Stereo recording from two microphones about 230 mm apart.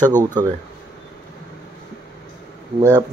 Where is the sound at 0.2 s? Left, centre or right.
Centre.